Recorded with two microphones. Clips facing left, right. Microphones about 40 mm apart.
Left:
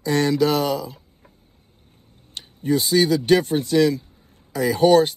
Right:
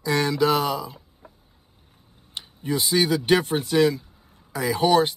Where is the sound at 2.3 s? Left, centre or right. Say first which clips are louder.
Left 5 dB; right.